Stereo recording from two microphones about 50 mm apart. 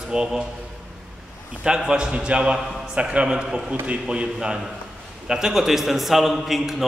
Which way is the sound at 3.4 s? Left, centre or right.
Centre.